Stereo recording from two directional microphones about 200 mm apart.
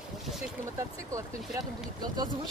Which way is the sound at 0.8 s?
15° right (ahead or behind).